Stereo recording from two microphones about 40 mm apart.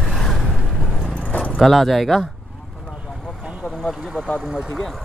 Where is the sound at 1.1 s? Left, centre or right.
Left.